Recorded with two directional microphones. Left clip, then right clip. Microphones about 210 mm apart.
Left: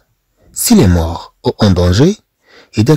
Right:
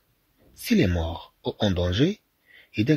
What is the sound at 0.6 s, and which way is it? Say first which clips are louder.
Speech: left 12 dB; 55° left (ahead or behind).